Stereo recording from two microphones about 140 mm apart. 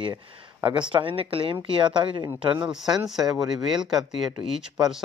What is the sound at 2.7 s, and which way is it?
Speech, 5° right (ahead or behind).